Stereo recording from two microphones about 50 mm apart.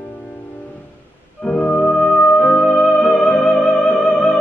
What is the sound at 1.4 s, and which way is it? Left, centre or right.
Music, left.